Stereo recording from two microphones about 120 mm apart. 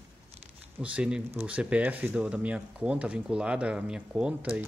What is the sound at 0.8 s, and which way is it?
Speech, 10° right (ahead or behind).